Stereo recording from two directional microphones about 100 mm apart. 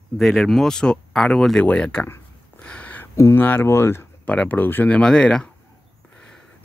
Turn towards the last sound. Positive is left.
turn(degrees=5)  # may be behind; listen again after turning